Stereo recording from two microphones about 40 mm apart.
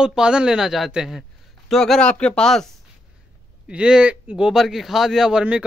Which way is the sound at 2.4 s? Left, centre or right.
Centre.